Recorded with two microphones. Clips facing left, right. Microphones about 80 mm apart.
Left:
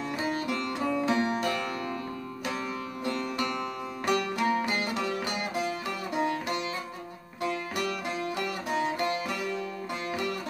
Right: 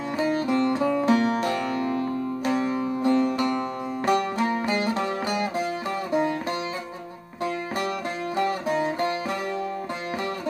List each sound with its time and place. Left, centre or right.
0.5 s music: right
8.4 s music: right